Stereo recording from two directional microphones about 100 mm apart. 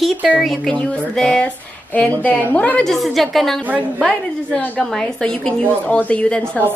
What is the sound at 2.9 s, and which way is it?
A woman's voice, centre (ahead or behind).